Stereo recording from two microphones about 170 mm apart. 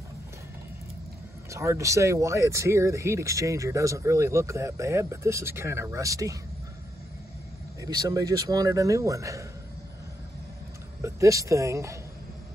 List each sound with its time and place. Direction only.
1.5 s speech: 15° right (ahead or behind)
7.8 s speech: 20° right (ahead or behind)
11.0 s speech: 15° right (ahead or behind)